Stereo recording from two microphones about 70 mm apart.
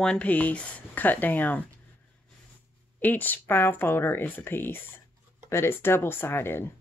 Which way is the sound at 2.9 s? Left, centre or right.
Left.